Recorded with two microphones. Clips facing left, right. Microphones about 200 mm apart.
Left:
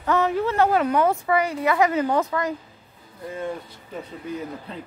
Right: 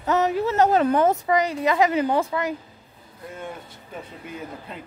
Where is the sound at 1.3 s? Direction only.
20° right (ahead or behind).